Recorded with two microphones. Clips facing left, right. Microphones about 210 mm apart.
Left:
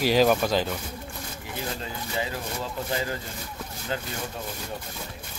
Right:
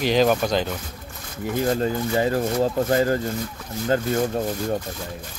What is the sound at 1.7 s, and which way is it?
Speech, 50° right (ahead or behind).